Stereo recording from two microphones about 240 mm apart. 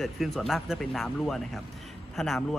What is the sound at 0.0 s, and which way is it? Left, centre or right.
A man's voice, centre.